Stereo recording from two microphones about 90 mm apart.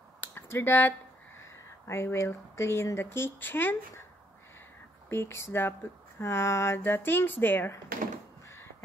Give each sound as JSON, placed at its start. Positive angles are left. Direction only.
{"t": 0.2, "sound": "speech", "side_deg": 25}
{"t": 5.1, "sound": "speech", "side_deg": 30}